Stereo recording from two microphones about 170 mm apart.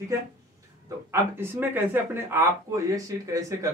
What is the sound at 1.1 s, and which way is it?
Speech, 15° right (ahead or behind).